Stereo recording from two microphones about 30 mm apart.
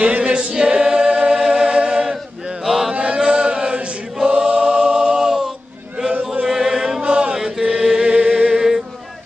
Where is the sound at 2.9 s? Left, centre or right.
Right.